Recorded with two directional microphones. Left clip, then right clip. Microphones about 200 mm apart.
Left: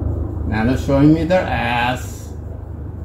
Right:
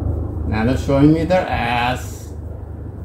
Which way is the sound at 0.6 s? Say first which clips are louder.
Even; 20° right (ahead or behind).